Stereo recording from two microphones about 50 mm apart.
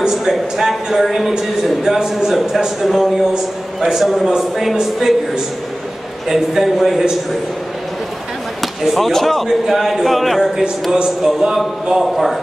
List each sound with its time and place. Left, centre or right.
0.0 s a man's voice: centre
1.3 s a man's voice: centre
6.2 s a man's voice: centre
8.8 s a man's voice: centre
10.6 s a man's voice: centre